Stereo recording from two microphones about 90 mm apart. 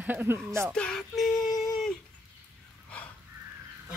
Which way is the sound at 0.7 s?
5° left (ahead or behind).